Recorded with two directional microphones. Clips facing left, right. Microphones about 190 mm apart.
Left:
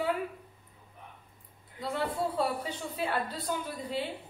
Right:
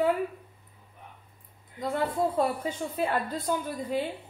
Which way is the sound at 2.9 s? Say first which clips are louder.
Right 3 dB; 50° right (ahead or behind).